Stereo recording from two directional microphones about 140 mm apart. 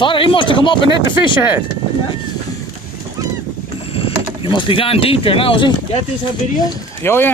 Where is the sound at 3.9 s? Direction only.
40° left (ahead or behind).